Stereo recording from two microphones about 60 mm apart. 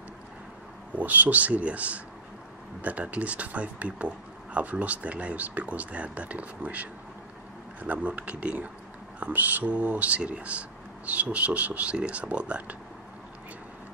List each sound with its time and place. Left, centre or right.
0.9 s speech: right